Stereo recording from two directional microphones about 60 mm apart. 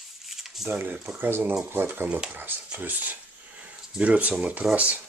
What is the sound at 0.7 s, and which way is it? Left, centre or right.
Speech, right.